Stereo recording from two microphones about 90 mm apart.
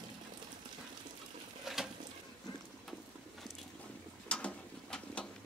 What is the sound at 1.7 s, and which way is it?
Pigeon, 5° right (ahead or behind).